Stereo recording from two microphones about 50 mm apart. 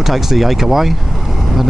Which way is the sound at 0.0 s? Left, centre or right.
Centre.